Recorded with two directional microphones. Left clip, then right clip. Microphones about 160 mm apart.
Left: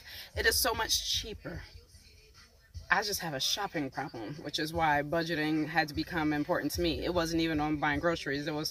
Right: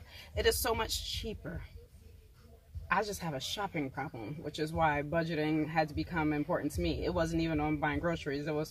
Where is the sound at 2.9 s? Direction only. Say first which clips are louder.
Left 3 dB; 15° right (ahead or behind).